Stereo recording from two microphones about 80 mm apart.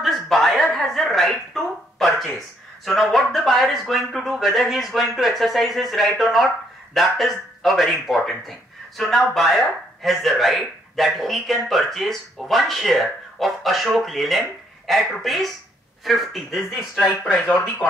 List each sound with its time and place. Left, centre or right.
0.0 s chuckle: centre
0.7 s speech: centre
17.5 s speech: left